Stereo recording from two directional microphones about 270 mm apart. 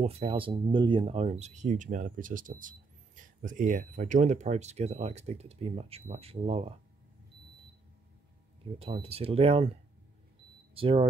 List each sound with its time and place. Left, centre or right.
0.0 s speech: right
8.7 s speech: right